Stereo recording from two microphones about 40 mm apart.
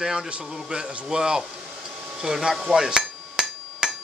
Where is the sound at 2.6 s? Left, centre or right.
Centre.